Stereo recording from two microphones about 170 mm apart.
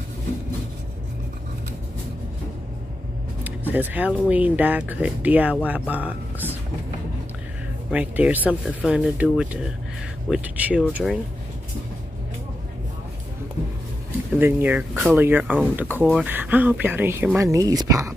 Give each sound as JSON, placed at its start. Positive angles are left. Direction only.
{"t": 3.4, "sound": "vehicle", "side_deg": -10}
{"t": 4.3, "sound": "speech", "side_deg": -10}
{"t": 7.9, "sound": "speech", "side_deg": -10}
{"t": 14.4, "sound": "speech", "side_deg": -10}